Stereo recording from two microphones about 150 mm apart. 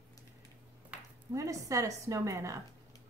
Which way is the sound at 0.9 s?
10° right (ahead or behind).